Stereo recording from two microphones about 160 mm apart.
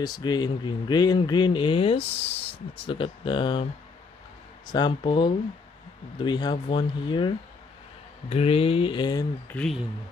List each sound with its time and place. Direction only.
0.0 s speech: 25° left (ahead or behind)
4.7 s speech: 30° left (ahead or behind)
9.5 s speech: 5° left (ahead or behind)